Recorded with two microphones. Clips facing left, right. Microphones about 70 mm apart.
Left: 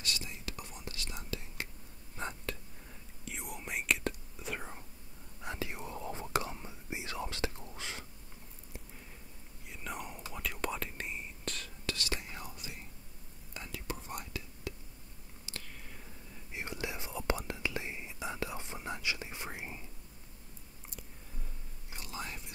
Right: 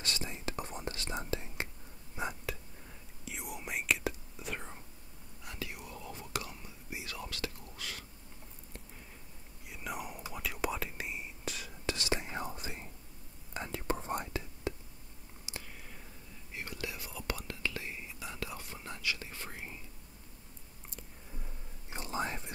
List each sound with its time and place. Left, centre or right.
0.0 s whispering: right
2.1 s whispering: centre
5.4 s whispering: left
9.7 s whispering: centre
11.8 s whispering: right
15.5 s a sound: centre
16.5 s whispering: left
21.9 s whispering: right